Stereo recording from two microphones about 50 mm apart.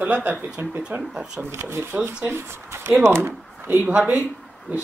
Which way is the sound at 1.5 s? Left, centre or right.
Right.